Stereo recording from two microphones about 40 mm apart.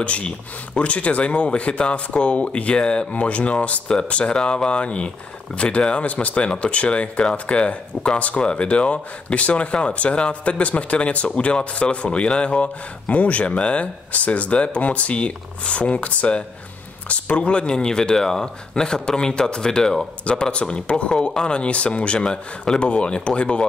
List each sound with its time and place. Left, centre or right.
0.0 s speech: left; by 20.1 s centre
20.5 s speech: left